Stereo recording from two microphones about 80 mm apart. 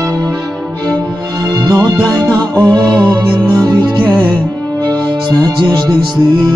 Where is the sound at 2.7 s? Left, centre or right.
Right.